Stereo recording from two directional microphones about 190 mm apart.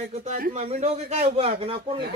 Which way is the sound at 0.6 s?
35° right (ahead or behind).